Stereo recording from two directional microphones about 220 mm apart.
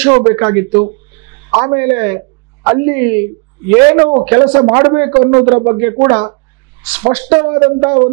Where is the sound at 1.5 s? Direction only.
25° right (ahead or behind).